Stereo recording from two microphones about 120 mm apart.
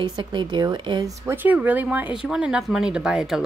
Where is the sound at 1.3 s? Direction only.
15° right (ahead or behind).